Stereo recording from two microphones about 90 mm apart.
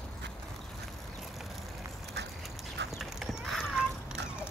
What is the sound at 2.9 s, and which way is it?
Clip-clop, 5° right (ahead or behind).